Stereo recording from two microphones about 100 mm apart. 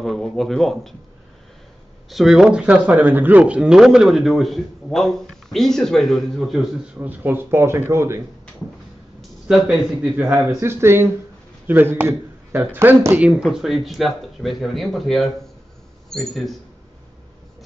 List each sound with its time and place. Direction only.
0.0 s speech: 5° left (ahead or behind)
2.0 s speech: centre (ahead or behind)
7.0 s speech: 20° right (ahead or behind)
9.5 s speech: 5° right (ahead or behind)
10.3 s speech: 25° right (ahead or behind)
13.4 s speech: 5° right (ahead or behind)